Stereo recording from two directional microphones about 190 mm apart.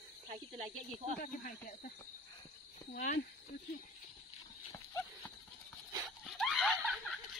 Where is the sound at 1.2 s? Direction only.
45° left (ahead or behind).